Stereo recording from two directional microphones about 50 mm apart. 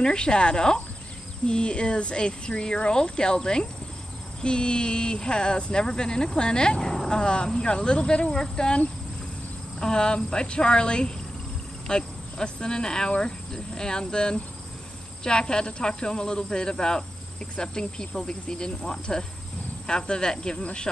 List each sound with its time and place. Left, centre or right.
0.0 s speech: centre